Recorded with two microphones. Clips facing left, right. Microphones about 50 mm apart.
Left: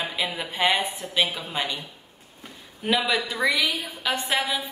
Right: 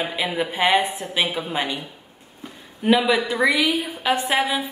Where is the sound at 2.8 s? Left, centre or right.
Centre.